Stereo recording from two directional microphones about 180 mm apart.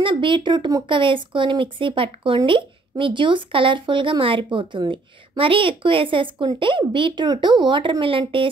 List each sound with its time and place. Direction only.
0.0 s speech: 25° right (ahead or behind)